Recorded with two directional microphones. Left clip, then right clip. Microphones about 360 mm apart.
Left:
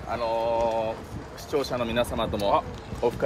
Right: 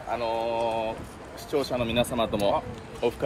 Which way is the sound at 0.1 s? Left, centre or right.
Centre.